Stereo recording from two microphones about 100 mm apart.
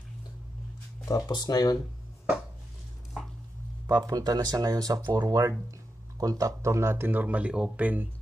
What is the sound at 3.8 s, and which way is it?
Speech, 40° right (ahead or behind).